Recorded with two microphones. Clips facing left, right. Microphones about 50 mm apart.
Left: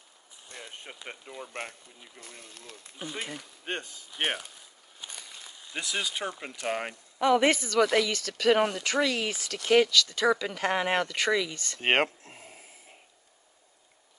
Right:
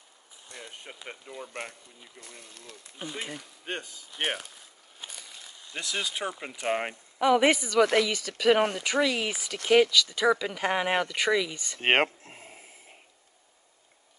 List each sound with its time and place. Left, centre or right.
0.9 s speech: centre
2.1 s speech: left
3.0 s speech: centre
3.3 s speech: left
5.7 s speech: centre
6.5 s speech: centre
7.2 s speech: centre
12.2 s snort: right